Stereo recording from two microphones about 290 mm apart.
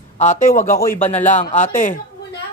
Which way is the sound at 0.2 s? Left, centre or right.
Left.